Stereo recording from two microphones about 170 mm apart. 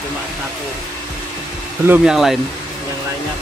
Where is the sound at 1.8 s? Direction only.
5° right (ahead or behind).